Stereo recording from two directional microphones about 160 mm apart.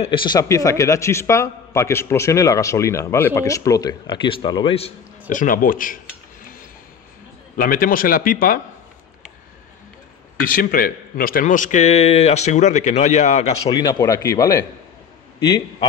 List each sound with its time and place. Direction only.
0.0 s a man's voice: 30° left (ahead or behind)
5.3 s a man's voice: 60° left (ahead or behind)
7.5 s a man's voice: 60° left (ahead or behind)
10.4 s a man's voice: 60° left (ahead or behind); by 13.6 s 45° left (ahead or behind)
13.7 s a man's voice: 25° left (ahead or behind)